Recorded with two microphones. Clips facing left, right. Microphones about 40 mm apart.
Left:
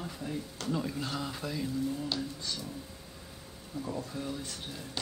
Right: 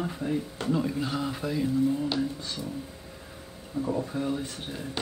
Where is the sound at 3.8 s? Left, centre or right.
Right.